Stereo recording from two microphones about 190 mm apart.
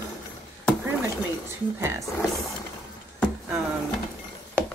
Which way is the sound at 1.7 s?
15° right (ahead or behind).